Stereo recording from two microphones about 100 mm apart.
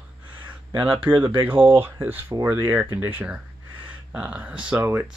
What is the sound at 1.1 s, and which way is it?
Speech, 55° right (ahead or behind).